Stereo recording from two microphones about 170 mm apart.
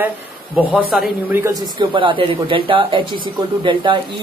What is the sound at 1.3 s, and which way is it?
Speech, 15° right (ahead or behind).